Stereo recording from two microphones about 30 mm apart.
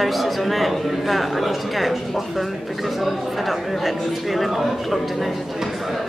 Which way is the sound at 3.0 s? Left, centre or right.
Centre.